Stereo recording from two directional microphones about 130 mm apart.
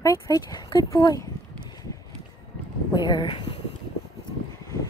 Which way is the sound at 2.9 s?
35° left (ahead or behind).